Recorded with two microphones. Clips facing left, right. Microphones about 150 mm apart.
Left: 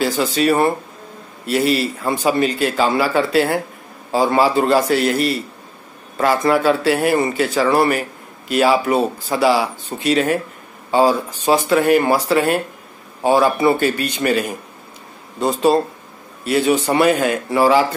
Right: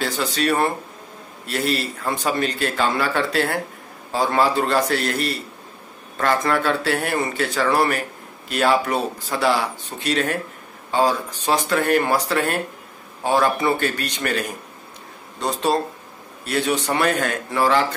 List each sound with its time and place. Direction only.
0.0 s a man's voice: 5° left (ahead or behind)
15.4 s a man's voice: 5° left (ahead or behind)